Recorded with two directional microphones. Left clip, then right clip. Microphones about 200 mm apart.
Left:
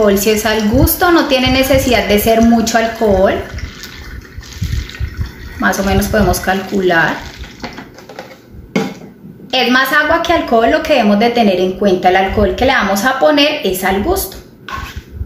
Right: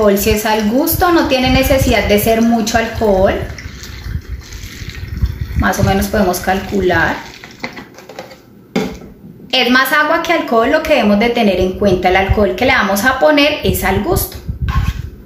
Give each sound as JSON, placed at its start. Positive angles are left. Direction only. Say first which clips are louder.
{"t": 0.0, "sound": "a woman's voice", "louder": "left 1 dB", "side_deg": 0}
{"t": 5.6, "sound": "a woman's voice", "louder": "left 1 dB", "side_deg": 5}
{"t": 9.5, "sound": "a woman's voice", "louder": "even", "side_deg": -5}